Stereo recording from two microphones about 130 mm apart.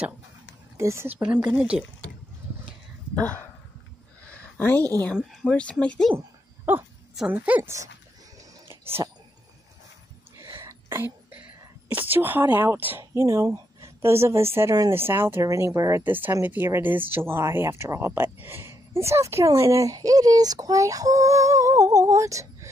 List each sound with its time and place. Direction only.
0.7 s speech: 20° right (ahead or behind)
4.3 s a sound: 15° left (ahead or behind)
5.1 s speech: 5° right (ahead or behind)
5.5 s speech: 10° left (ahead or behind)
6.1 s a sound: 15° right (ahead or behind)
7.2 s speech: 10° right (ahead or behind)
8.6 s whispering: 20° right (ahead or behind)
10.6 s whispering: 20° right (ahead or behind)
11.9 s speech: 15° right (ahead or behind)